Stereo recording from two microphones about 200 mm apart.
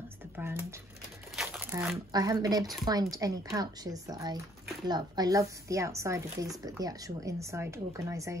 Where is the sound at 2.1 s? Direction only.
20° right (ahead or behind).